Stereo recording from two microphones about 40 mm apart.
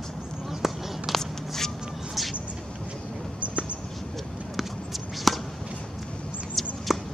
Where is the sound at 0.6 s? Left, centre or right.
Centre.